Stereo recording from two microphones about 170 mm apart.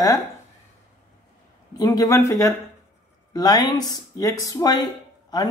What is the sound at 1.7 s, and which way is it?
Speech, 20° left (ahead or behind).